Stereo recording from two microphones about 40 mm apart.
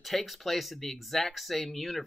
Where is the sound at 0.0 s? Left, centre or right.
Centre.